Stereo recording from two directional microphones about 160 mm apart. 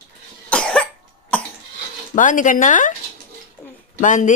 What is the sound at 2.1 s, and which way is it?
Speech, 55° left (ahead or behind).